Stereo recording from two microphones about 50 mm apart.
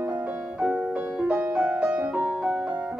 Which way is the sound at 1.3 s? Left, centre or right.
Right.